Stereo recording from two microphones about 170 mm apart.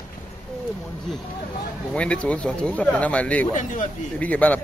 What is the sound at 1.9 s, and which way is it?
A man's voice, 5° left (ahead or behind).